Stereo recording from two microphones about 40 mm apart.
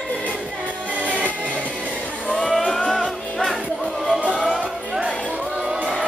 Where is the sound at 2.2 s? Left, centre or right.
Left.